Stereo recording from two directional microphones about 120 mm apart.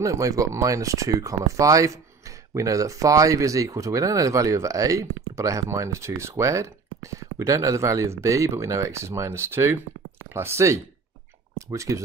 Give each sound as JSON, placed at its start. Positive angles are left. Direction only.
{"t": 0.0, "sound": "speech", "side_deg": -25}